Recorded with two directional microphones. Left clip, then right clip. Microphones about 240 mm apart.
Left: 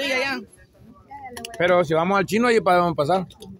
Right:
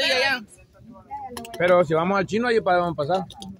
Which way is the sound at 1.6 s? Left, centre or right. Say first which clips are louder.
Even; centre.